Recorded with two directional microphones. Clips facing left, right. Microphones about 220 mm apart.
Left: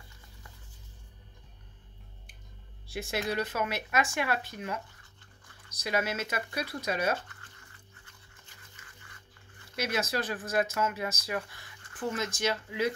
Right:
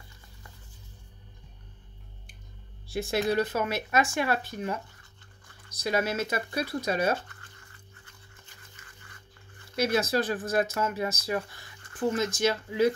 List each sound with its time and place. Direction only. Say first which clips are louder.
2.9 s speech: right 6 dB; 35° right (ahead or behind)
5.8 s speech: right 4 dB; 35° right (ahead or behind)
9.8 s speech: right 6 dB; 35° right (ahead or behind)